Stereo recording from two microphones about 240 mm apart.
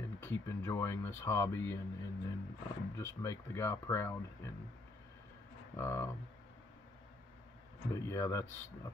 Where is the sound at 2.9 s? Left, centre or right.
Centre.